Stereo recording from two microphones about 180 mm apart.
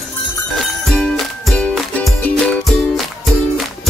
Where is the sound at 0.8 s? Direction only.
Centre (ahead or behind).